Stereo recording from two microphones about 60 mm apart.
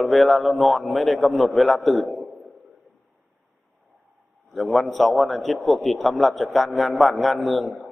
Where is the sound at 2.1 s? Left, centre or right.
Centre.